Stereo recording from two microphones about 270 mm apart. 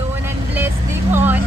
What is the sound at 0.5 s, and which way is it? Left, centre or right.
Vehicle, centre.